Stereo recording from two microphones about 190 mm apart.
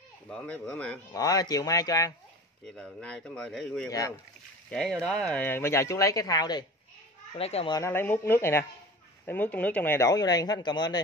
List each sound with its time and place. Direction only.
0.3 s speech: 5° left (ahead or behind)
1.1 s speech: 20° left (ahead or behind)
2.6 s speech: 5° left (ahead or behind); by 6.6 s 20° left (ahead or behind)
7.3 s speech: 30° left (ahead or behind)
7.7 s speech: 15° left (ahead or behind)